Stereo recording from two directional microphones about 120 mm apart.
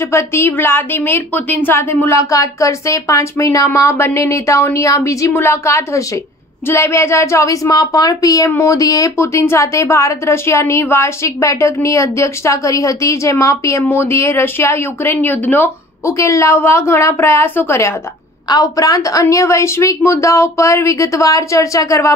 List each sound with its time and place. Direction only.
0.1 s a woman's voice: 20° left (ahead or behind)